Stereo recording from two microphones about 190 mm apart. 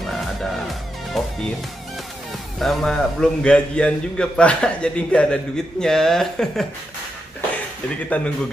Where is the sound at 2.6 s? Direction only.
Centre (ahead or behind).